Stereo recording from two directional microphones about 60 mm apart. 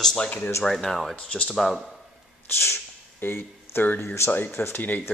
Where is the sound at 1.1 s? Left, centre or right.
Centre.